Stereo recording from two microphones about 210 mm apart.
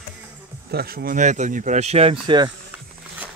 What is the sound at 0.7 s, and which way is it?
Speech, 50° right (ahead or behind).